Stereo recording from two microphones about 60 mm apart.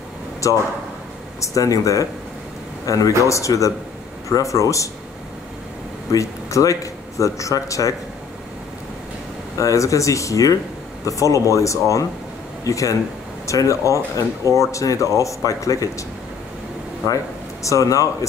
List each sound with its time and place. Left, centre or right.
0.4 s speech: left
1.4 s speech: left
6.1 s speech: left
9.6 s speech: left
17.6 s speech: left